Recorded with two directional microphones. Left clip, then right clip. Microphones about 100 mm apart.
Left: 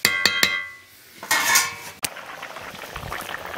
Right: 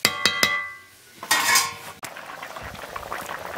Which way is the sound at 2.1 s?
5° right (ahead or behind).